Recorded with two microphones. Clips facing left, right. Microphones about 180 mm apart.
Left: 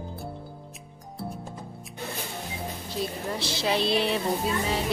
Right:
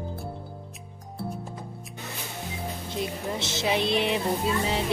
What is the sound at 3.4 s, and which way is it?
Speech, 20° right (ahead or behind).